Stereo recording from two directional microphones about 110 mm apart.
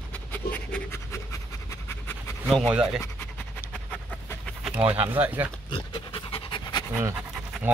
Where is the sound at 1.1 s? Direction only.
25° left (ahead or behind).